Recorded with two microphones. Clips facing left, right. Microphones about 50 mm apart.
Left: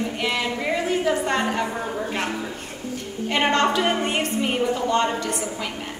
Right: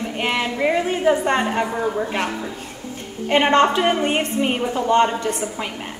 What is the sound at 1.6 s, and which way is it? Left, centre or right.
Speech, centre.